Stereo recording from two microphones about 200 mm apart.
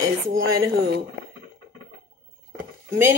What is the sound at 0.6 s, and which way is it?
Speech, 50° right (ahead or behind).